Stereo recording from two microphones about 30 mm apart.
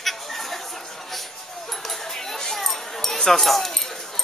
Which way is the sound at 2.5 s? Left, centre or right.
Centre.